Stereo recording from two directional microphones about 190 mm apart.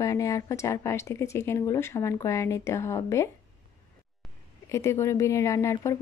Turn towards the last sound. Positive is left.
turn(degrees=15)  # may be behind; listen again after turning